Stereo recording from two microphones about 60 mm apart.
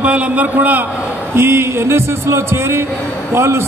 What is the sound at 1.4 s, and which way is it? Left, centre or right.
A man's voice, right.